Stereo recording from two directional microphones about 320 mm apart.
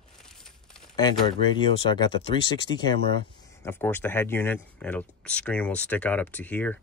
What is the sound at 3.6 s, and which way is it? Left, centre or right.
Speech, centre.